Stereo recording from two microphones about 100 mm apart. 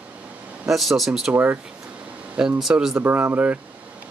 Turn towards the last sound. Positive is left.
turn(degrees=-15)  # may be behind; listen again after turning